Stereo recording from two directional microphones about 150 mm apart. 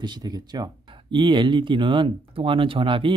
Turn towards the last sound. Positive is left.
turn(degrees=-35)  # may be behind; listen again after turning